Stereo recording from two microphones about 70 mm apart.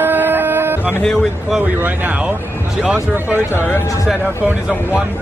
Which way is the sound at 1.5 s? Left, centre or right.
Right.